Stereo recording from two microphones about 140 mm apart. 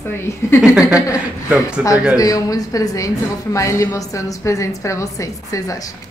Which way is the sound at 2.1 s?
25° left (ahead or behind).